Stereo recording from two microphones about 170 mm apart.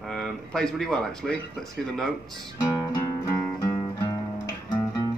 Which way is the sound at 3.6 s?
25° left (ahead or behind).